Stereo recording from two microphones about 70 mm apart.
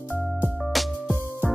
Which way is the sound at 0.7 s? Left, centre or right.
Centre.